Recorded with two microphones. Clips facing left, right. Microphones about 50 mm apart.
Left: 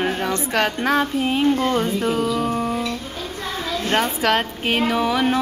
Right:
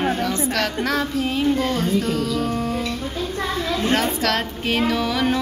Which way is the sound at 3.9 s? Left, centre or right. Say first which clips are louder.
Left 4 dB; centre.